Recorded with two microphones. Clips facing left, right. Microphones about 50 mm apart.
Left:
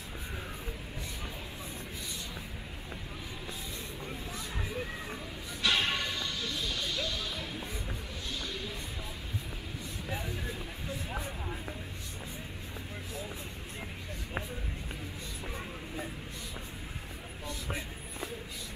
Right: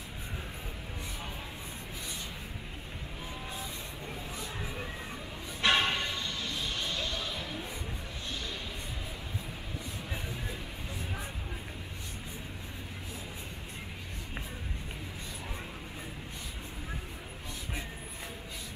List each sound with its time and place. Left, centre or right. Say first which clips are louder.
5.6 s music: right 3 dB; right